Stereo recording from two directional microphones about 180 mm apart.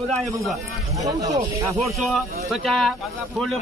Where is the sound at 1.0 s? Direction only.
20° right (ahead or behind).